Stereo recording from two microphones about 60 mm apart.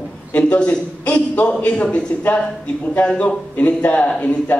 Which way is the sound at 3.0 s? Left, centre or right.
Centre.